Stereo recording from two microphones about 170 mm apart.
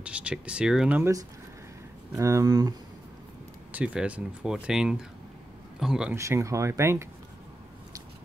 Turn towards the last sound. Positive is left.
turn(degrees=-15)  # may be behind; listen again after turning